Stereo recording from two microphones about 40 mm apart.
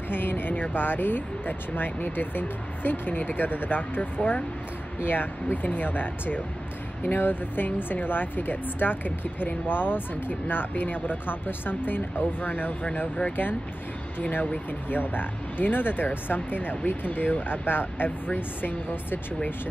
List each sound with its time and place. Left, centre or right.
0.1 s speech: left
14.7 s speech: left